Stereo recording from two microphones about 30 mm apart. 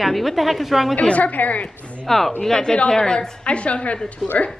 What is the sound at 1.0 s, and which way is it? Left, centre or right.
Speech, left.